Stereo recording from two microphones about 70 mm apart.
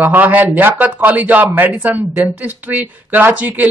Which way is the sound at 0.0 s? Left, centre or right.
Right.